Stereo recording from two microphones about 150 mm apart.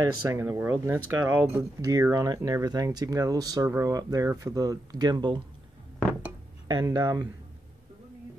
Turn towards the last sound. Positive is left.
turn(degrees=-25)  # may be behind; listen again after turning